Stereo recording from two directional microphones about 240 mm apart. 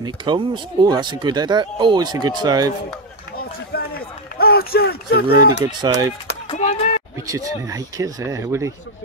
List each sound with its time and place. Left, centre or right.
0.0 s speech: centre
3.7 s run: left
4.4 s speech: left
5.6 s speech: centre
6.5 s a sound: left
7.2 s speech: centre